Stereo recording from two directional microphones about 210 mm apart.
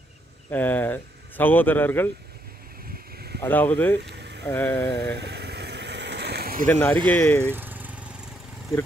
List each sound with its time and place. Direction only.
0.5 s speech: 10° left (ahead or behind)
3.4 s speech: 10° left (ahead or behind)
4.1 s vehicle: 55° right (ahead or behind)
4.5 s speech: 15° left (ahead or behind)
5.1 s vehicle: 50° right (ahead or behind)
6.7 s speech: 10° left (ahead or behind)
7.5 s vehicle: 10° right (ahead or behind)